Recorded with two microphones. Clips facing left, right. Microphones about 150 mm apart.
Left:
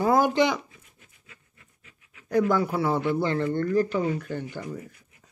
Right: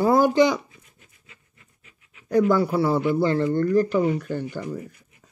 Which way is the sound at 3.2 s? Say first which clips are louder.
Right 4 dB; 35° right (ahead or behind).